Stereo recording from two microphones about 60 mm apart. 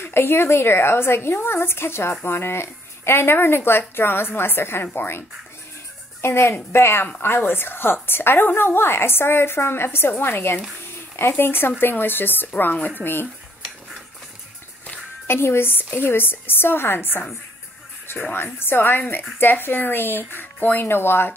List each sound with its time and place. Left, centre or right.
0.0 s a woman's voice: left
6.2 s a woman's voice: left
15.2 s a woman's voice: left
18.3 s a woman's voice: left